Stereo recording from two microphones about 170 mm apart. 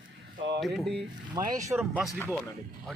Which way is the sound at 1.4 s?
20° right (ahead or behind).